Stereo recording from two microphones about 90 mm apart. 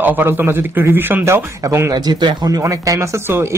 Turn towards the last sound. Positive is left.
turn(degrees=-25)  # may be behind; listen again after turning